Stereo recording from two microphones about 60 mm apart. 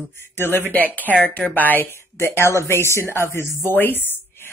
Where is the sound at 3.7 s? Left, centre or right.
Left.